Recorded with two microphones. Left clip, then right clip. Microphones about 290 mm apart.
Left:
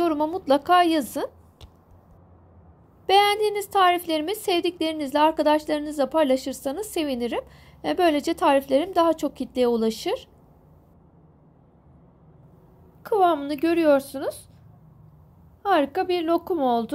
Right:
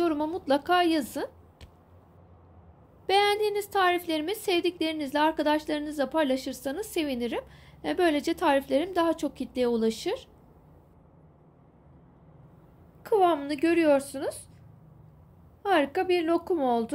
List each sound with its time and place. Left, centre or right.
0.0 s a woman's voice: centre
3.1 s a woman's voice: centre
13.0 s a woman's voice: centre
15.6 s a woman's voice: centre